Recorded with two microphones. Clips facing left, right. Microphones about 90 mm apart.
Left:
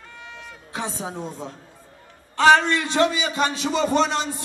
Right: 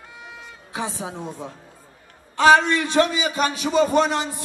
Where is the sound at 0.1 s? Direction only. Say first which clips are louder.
Left 1 dB; 10° right (ahead or behind).